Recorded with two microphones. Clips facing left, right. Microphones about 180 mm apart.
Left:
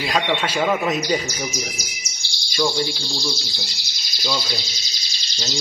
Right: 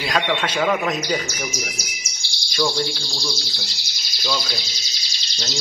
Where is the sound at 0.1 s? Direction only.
5° left (ahead or behind).